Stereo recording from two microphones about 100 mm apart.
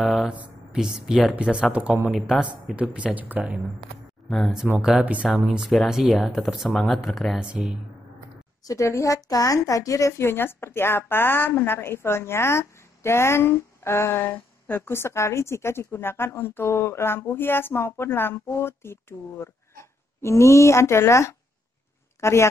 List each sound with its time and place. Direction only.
0.0 s a sound: centre (ahead or behind)
0.3 s speech: 10° right (ahead or behind)
2.0 s speech: centre (ahead or behind)
2.7 s speech: 10° right (ahead or behind)
4.3 s speech: centre (ahead or behind)
7.3 s speech: 10° right (ahead or behind)
8.6 s a woman's voice: 30° left (ahead or behind)